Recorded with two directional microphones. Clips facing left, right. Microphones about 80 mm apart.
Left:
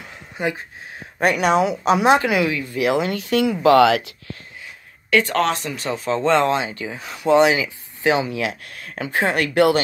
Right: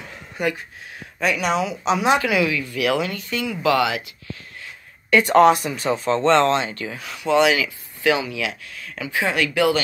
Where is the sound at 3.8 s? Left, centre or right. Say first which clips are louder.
Left 7 dB; left.